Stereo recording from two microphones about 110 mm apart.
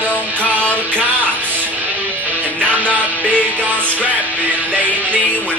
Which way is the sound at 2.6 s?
15° right (ahead or behind).